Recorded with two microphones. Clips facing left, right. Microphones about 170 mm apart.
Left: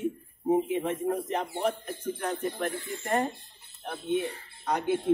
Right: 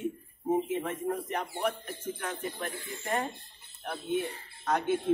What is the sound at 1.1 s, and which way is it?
Speech, 25° left (ahead or behind).